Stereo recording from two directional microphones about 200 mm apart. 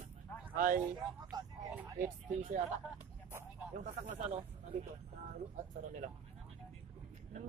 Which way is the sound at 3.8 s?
40° right (ahead or behind).